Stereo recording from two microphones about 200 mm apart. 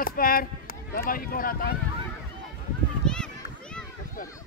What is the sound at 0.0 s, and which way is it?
Speech, 45° left (ahead or behind).